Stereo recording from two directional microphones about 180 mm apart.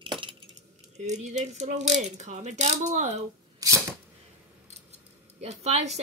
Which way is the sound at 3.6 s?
20° right (ahead or behind).